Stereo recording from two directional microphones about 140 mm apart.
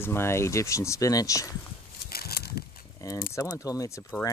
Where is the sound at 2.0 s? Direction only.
90° left.